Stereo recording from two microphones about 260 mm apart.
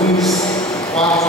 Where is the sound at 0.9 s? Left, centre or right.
Left.